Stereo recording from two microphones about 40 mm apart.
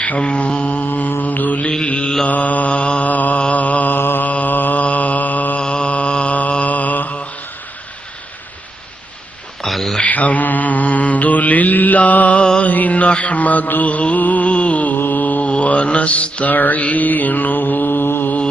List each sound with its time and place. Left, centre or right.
0.2 s mantra: left
0.8 s mantra: left
3.1 s mantra: left
4.0 s mantra: left
4.3 s mantra: left
5.6 s mantra: left
6.5 s mantra: left
9.6 s a sound: centre
10.0 s mantra: left
15.0 s mantra: left
15.5 s mantra: left
16.5 s mantra: left